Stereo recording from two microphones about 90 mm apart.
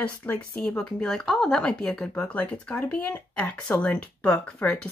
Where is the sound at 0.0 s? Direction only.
15° left (ahead or behind).